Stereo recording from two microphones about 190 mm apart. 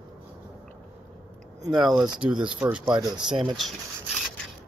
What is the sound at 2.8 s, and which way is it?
Speech, 20° right (ahead or behind).